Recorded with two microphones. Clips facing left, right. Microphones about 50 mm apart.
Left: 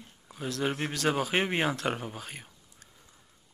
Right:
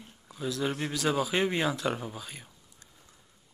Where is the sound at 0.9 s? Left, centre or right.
Left.